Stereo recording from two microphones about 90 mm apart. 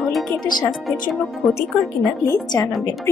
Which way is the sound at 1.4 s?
Centre (ahead or behind).